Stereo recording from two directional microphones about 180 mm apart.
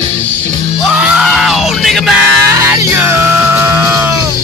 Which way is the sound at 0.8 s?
5° right (ahead or behind).